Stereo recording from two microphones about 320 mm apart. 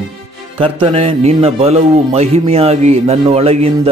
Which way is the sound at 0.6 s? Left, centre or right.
Centre.